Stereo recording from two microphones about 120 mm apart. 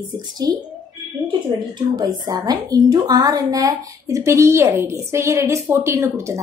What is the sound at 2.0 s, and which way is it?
A woman's voice, 35° right (ahead or behind).